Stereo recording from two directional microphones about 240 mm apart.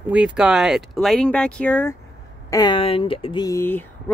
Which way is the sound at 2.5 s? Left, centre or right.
Centre.